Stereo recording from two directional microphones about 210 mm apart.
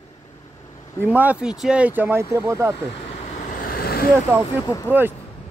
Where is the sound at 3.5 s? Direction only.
45° left (ahead or behind).